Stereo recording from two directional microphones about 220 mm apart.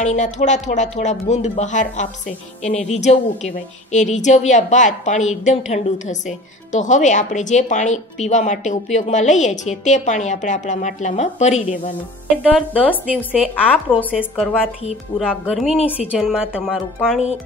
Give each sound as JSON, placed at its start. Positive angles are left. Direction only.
{"t": 0.0, "sound": "a woman's voice", "side_deg": 30}
{"t": 12.5, "sound": "speech", "side_deg": 5}
{"t": 13.0, "sound": "speech", "side_deg": -5}